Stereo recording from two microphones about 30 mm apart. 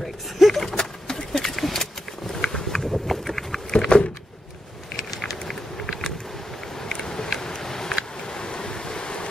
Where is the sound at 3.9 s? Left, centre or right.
Left.